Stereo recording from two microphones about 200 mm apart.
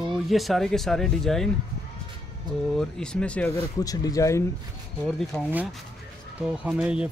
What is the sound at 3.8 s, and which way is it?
Speech, 20° left (ahead or behind).